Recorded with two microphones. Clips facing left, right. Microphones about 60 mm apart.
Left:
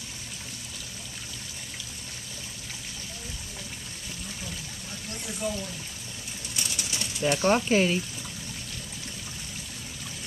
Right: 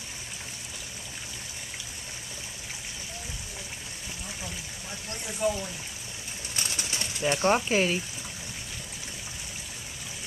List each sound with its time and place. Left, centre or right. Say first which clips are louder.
5.4 s speech: right 4 dB; right
6.5 s bird: right 1 dB; right
7.2 s speech: left 1 dB; centre